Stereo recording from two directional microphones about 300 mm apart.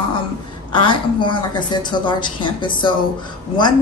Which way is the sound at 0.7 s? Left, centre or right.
Centre.